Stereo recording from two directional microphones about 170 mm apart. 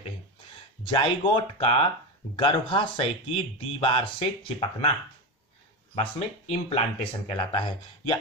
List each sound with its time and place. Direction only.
1.2 s speech: 30° left (ahead or behind)
5.9 s speech: 35° left (ahead or behind)